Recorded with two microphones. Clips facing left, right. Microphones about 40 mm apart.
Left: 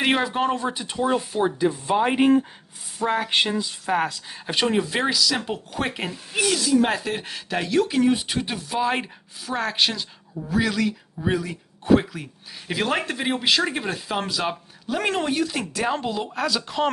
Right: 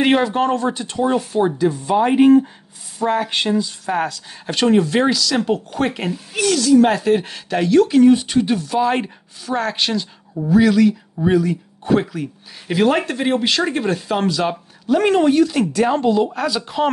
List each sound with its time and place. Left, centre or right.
0.0 s speech: centre
1.6 s speech: centre
6.3 s speech: centre